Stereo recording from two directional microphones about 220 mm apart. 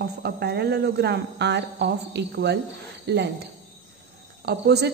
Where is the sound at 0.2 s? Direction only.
45° right (ahead or behind).